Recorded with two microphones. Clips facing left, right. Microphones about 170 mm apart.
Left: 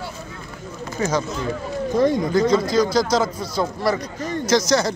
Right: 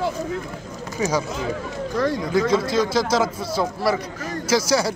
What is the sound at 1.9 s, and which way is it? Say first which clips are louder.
Speech: left 5 dB; 20° left (ahead or behind).